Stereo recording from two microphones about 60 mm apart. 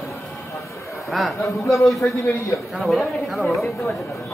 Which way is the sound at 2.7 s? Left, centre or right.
Centre.